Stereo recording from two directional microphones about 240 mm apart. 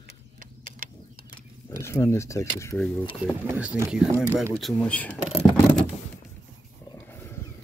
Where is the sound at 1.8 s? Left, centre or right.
Centre.